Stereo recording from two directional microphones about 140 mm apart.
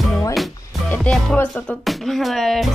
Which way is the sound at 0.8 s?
10° left (ahead or behind).